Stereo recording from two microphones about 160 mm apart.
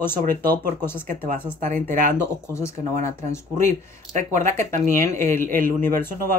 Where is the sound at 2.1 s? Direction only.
15° left (ahead or behind).